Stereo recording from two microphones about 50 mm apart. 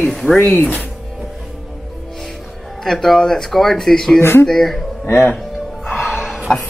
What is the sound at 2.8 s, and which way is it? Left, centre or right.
Speech, centre.